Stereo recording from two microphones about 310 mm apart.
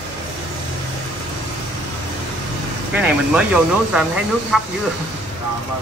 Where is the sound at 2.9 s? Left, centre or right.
Centre.